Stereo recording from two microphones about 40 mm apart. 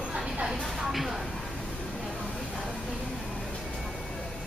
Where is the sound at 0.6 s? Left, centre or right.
Centre.